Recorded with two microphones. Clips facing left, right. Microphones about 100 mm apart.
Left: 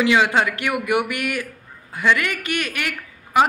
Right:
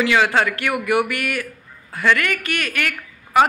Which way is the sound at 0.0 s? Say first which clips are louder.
Even; 15° left (ahead or behind).